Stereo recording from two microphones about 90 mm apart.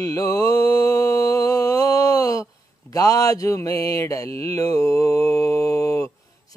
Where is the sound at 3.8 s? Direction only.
40° left (ahead or behind).